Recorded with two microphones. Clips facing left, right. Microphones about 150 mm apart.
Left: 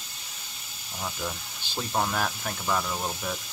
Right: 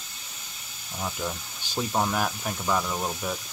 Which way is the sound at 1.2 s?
10° right (ahead or behind).